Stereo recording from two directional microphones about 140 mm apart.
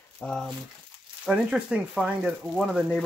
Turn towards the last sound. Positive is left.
turn(degrees=0)  # may be behind; listen again after turning